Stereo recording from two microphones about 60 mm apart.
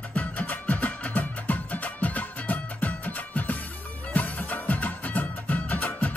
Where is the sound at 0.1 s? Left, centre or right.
Left.